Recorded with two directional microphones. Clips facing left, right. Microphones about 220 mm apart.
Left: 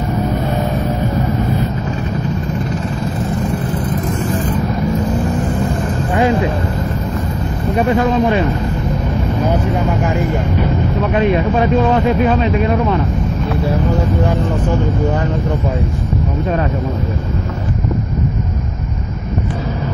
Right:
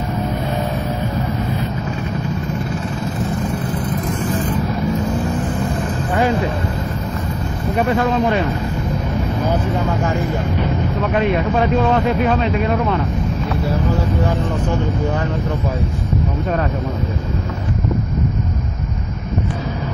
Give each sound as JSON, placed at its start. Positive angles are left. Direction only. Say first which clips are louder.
{"t": 7.7, "sound": "speech", "louder": "left 3 dB", "side_deg": 20}
{"t": 9.8, "sound": "speech", "louder": "left 2 dB", "side_deg": 15}